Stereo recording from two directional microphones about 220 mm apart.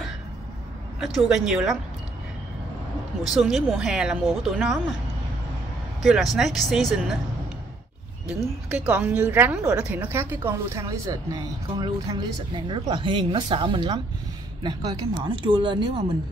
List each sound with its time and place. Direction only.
0.9 s speech: centre (ahead or behind)
3.3 s speech: centre (ahead or behind)
6.0 s speech: centre (ahead or behind)
8.6 s a woman's voice: 5° right (ahead or behind); by 15.8 s 20° right (ahead or behind)